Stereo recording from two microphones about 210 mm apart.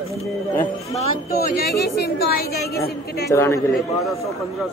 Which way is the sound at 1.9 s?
50° left (ahead or behind).